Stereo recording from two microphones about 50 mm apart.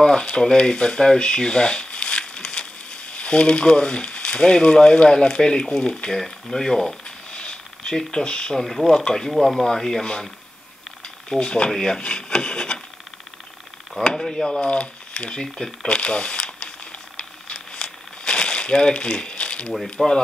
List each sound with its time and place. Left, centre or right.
0.0 s a sound: centre
3.2 s speech: centre
6.0 s speech: centre
7.3 s a sound: centre
8.9 s speech: centre
11.2 s stir: centre
11.7 s speech: centre
14.0 s speech: centre
14.7 s speech: left
15.4 s speech: centre
16.0 s a sound: centre
17.2 s crumpling: centre
19.7 s speech: centre